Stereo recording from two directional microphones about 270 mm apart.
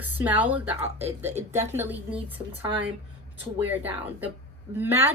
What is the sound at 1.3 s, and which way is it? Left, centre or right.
Speech, right.